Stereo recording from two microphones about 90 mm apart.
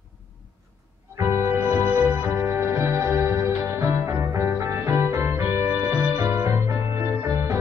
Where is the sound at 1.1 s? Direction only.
30° right (ahead or behind).